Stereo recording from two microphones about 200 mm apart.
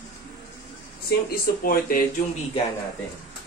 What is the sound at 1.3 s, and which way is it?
Speech, 45° left (ahead or behind).